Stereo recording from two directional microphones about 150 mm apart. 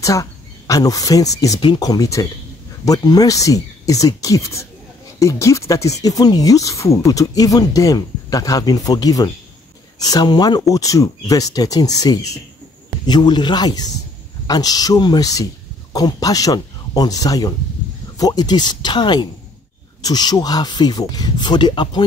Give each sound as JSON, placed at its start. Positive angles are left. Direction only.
{"t": 0.0, "sound": "speech", "side_deg": 20}